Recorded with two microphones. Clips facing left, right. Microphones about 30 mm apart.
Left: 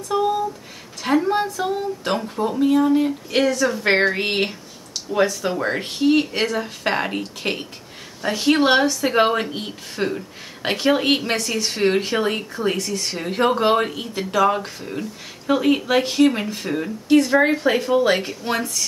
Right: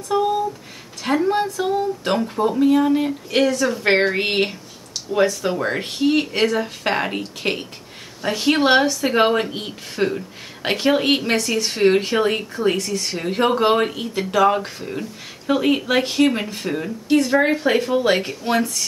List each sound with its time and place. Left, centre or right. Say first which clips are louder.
0.1 s speech: right 1 dB; centre